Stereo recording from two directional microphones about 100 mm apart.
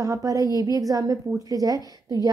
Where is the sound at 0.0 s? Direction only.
35° right (ahead or behind).